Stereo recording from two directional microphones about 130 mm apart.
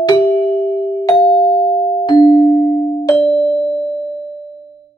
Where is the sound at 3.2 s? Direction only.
Centre (ahead or behind).